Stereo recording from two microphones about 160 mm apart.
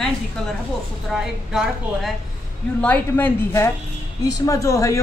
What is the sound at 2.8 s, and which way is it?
A man's voice, 10° left (ahead or behind).